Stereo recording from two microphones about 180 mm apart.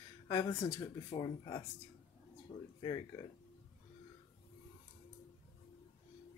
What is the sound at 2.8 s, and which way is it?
Speech, 25° left (ahead or behind).